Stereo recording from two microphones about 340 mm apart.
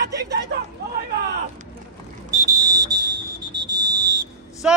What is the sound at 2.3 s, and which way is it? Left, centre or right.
Whistle, centre.